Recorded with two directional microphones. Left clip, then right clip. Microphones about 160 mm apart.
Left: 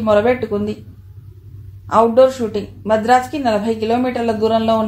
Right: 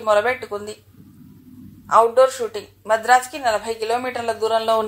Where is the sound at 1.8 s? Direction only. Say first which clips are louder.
Left 3 dB; 40° right (ahead or behind).